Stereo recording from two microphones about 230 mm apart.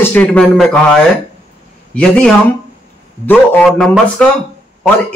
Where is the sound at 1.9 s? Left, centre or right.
Centre.